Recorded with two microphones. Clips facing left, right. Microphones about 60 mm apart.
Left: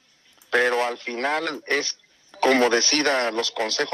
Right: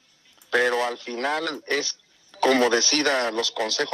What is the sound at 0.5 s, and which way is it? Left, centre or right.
A man's voice, left.